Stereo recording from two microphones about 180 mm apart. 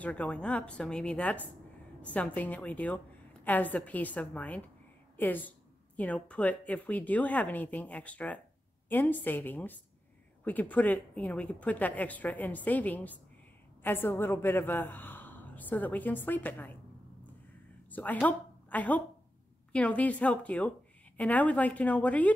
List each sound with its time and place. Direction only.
0.0 s a woman's voice: 5° left (ahead or behind)
18.2 s a woman's voice: 10° left (ahead or behind)